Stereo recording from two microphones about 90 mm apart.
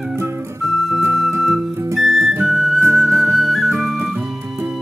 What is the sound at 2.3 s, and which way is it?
Music, 20° right (ahead or behind).